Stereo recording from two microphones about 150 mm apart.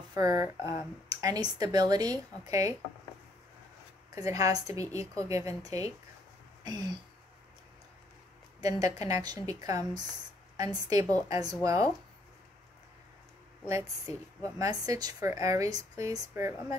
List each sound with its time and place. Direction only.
0.1 s a woman's voice: 25° right (ahead or behind)
4.1 s a woman's voice: 20° right (ahead or behind)
8.5 s a woman's voice: 25° right (ahead or behind)
13.7 s a woman's voice: 20° right (ahead or behind)